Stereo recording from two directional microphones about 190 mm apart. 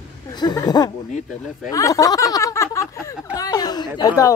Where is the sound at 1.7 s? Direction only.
15° left (ahead or behind).